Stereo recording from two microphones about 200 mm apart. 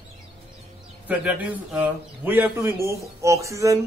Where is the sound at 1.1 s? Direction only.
5° right (ahead or behind).